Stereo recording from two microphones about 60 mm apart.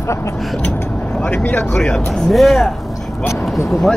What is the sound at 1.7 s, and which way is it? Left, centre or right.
Speech, centre.